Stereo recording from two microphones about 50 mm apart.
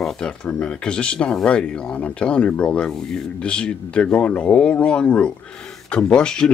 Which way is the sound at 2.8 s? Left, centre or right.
Centre.